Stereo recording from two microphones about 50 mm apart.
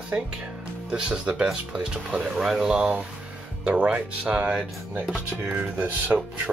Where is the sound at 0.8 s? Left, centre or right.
Centre.